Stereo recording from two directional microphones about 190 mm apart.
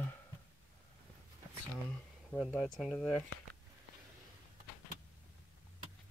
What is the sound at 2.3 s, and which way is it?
Speech, 5° left (ahead or behind).